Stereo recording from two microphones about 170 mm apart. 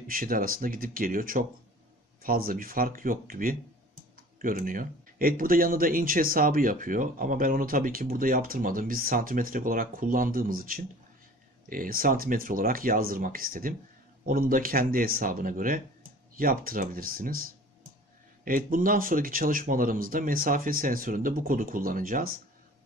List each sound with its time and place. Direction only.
0.1 s speech: 55° right (ahead or behind)
18.4 s speech: 55° right (ahead or behind)